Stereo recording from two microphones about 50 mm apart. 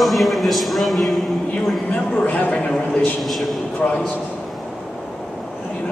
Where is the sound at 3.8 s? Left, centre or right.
Left.